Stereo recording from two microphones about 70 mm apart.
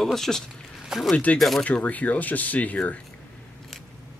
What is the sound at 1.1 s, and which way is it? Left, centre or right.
Speech, left.